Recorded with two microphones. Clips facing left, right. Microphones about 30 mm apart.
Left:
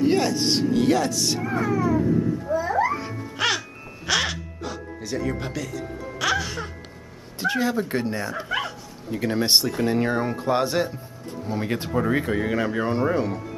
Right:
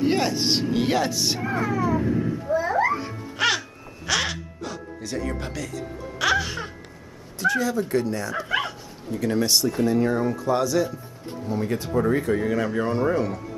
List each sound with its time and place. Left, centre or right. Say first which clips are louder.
0.0 s speech: left 1 dB; centre
2.0 s speech: left 2 dB; right
2.5 s babbling: right 2 dB; centre
4.0 s gasp: left 1 dB; centre
6.1 s music: right 2 dB; centre
7.3 s speech: right 1 dB; left
8.5 s dog: right 3 dB; centre
9.1 s speech: left 1 dB; left